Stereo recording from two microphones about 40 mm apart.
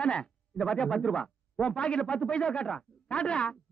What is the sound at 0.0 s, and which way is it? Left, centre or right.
A man's voice, left.